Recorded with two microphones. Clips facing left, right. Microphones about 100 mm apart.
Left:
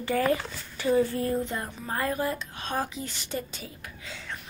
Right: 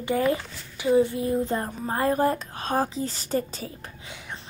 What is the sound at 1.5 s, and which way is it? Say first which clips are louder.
Speech: right 5 dB; 35° right (ahead or behind).